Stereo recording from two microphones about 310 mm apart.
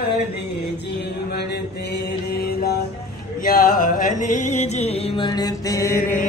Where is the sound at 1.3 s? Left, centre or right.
Left.